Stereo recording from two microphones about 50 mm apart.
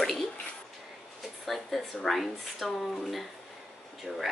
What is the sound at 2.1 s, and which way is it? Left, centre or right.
Speech, centre.